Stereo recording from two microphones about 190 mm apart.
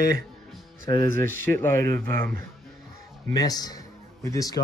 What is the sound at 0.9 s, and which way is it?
A man's voice, 15° left (ahead or behind).